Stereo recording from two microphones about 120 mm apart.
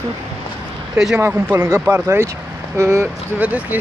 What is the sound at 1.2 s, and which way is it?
Speech, 15° right (ahead or behind).